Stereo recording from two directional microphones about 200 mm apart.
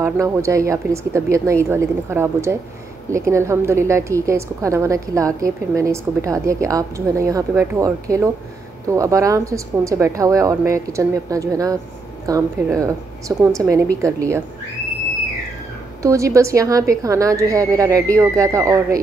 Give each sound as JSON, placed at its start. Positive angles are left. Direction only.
{"t": 0.0, "sound": "a woman's voice", "side_deg": -15}
{"t": 16.0, "sound": "a woman's voice", "side_deg": -15}